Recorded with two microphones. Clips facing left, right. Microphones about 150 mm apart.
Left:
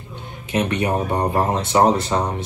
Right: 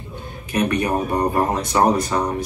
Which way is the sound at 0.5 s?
25° left (ahead or behind).